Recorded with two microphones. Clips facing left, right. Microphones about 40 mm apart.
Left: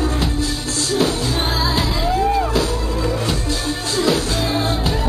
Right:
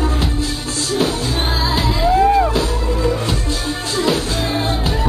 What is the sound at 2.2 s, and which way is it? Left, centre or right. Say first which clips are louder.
Music: right 4 dB; centre.